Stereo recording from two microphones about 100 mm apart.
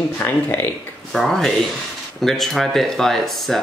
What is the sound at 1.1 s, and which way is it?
Speech, centre (ahead or behind).